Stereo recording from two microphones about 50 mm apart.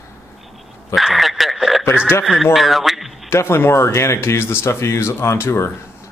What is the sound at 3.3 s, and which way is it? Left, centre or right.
Speech, left.